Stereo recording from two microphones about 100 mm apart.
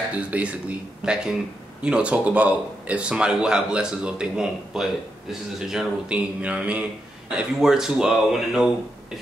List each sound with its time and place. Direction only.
0.3 s a man's voice: 15° right (ahead or behind)